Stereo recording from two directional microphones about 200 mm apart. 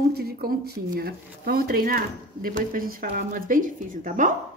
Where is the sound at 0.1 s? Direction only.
50° right (ahead or behind).